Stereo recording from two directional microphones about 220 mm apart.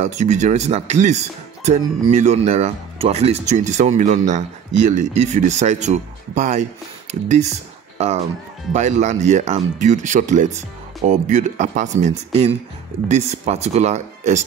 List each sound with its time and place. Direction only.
0.0 s speech: 30° right (ahead or behind)
8.7 s speech: 35° right (ahead or behind)